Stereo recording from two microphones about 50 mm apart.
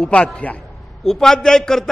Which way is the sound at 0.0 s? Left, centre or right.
Left.